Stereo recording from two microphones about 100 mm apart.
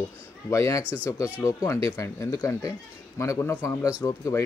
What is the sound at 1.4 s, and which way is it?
Speech, 35° left (ahead or behind).